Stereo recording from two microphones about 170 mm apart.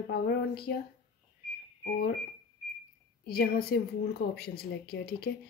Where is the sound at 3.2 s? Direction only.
65° left (ahead or behind).